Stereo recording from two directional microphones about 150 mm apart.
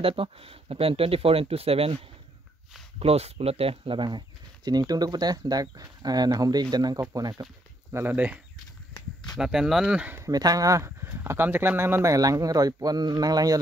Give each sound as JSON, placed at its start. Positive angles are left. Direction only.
{"t": 0.0, "sound": "speech", "side_deg": -40}
{"t": 7.9, "sound": "speech", "side_deg": -10}
{"t": 8.9, "sound": "a sound", "side_deg": 25}
{"t": 9.4, "sound": "speech", "side_deg": -5}